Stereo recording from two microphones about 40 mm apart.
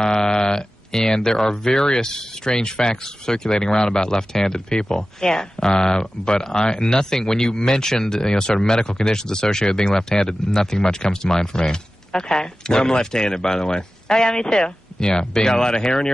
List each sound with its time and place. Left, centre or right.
0.0 s speech: centre